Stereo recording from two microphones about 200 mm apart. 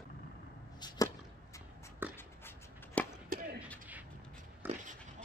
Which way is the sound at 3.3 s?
45° right (ahead or behind).